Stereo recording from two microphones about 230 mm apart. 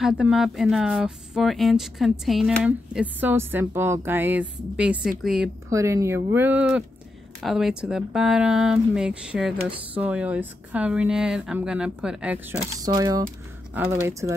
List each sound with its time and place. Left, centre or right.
0.0 s speech: centre
5.7 s speech: centre
12.8 s speech: centre